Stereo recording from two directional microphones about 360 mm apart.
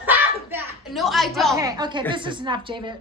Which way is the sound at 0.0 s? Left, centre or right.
Centre.